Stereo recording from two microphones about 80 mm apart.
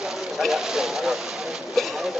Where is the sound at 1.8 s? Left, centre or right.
Centre.